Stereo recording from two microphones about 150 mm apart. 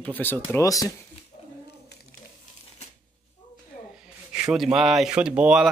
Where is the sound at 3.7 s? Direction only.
60° left (ahead or behind).